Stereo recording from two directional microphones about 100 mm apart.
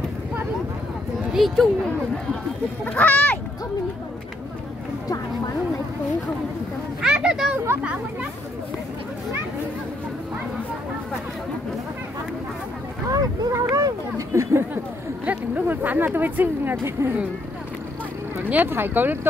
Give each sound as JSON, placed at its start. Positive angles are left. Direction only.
{"t": 1.3, "sound": "speech", "side_deg": 0}
{"t": 2.8, "sound": "speech", "side_deg": 15}
{"t": 7.0, "sound": "a child's voice", "side_deg": -5}
{"t": 13.1, "sound": "speech", "side_deg": -40}
{"t": 18.4, "sound": "speech", "side_deg": -20}